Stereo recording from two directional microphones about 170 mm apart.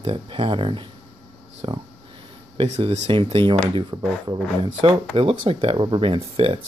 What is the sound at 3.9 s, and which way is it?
Speech, 25° right (ahead or behind).